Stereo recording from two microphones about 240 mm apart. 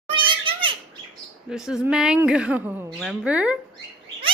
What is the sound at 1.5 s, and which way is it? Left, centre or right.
Speech, centre.